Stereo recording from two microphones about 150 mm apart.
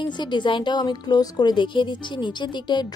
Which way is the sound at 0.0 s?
30° left (ahead or behind).